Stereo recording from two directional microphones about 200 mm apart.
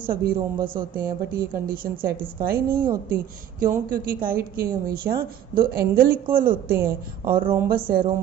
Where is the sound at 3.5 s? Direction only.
45° right (ahead or behind).